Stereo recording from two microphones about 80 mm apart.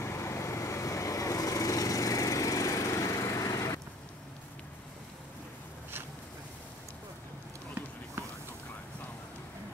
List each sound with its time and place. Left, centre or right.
0.0 s vehicle: left